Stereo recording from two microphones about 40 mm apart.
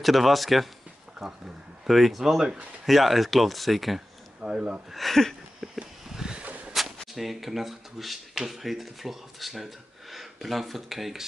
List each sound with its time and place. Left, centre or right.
0.0 s speech: centre
1.9 s speech: centre
4.4 s speech: right
4.9 s speech: centre
5.6 s a sound: centre
6.4 s a sound: right
7.2 s speech: centre